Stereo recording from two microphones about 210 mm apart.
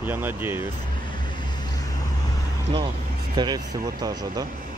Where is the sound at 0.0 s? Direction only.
10° right (ahead or behind).